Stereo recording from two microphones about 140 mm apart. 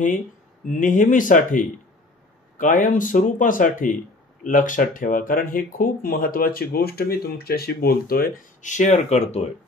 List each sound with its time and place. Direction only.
0.7 s speech: 65° left (ahead or behind); by 9.5 s 50° left (ahead or behind)